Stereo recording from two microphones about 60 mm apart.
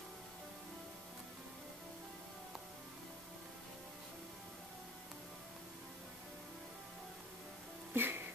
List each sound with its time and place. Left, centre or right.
7.9 s music: right